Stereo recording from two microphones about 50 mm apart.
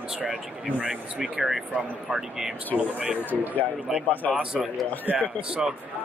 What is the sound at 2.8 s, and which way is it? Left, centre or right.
Speech, right.